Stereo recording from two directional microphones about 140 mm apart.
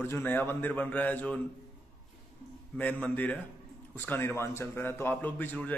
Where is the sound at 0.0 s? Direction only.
15° left (ahead or behind).